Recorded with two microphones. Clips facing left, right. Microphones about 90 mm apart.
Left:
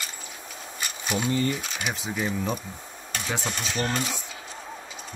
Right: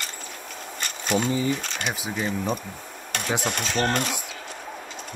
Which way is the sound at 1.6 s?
5° left (ahead or behind).